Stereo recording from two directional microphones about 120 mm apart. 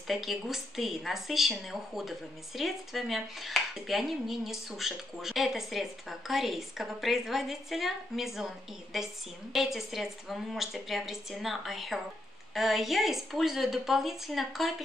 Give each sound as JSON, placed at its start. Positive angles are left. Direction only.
{"t": 0.1, "sound": "a woman's voice", "side_deg": 0}